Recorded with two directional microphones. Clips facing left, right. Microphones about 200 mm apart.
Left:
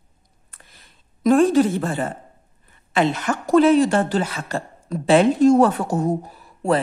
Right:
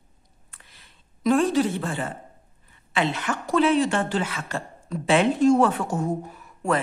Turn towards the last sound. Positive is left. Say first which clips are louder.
# left 4 dB
turn(degrees=35)  # may be behind; listen again after turning